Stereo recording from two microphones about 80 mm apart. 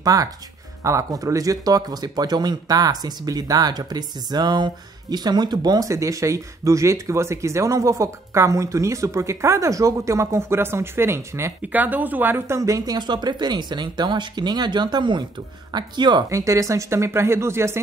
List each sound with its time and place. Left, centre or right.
0.0 s speech: right
5.9 s speech: right
11.6 s speech: right
16.3 s speech: right